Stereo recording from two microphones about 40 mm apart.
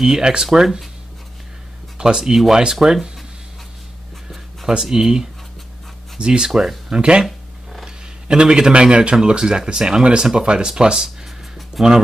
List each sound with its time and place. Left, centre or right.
0.0 s speech: centre
2.0 s speech: centre
4.6 s speech: centre
7.8 s a sound: centre
9.1 s speech: centre